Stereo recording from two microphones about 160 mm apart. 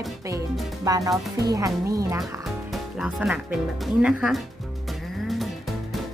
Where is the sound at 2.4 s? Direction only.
Centre (ahead or behind).